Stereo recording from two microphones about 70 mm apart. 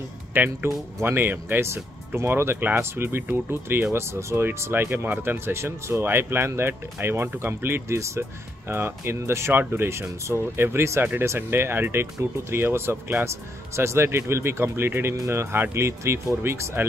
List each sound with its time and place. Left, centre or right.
0.3 s speech: right